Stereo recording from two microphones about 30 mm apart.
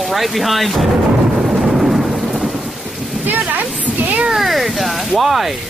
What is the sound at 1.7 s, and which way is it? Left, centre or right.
Thunder, centre.